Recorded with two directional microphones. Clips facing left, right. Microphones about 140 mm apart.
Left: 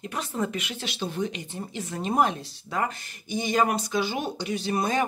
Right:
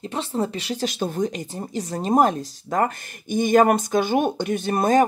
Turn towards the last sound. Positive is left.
turn(degrees=-45)  # may be behind; listen again after turning